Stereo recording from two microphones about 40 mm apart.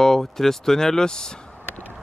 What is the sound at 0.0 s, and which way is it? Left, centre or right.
Speech, centre.